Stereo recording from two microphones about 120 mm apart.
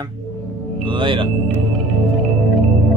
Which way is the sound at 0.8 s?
45° right (ahead or behind).